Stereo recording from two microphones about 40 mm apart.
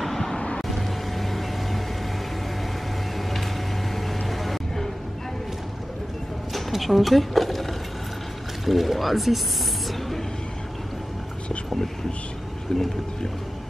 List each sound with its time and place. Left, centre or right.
0.0 s vehicle: centre
3.9 s vehicle: centre
6.5 s a sound: centre
8.6 s speech: centre
9.8 s a sound: centre
12.7 s speech: centre